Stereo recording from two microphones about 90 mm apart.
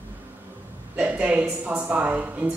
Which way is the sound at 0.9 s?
15° right (ahead or behind).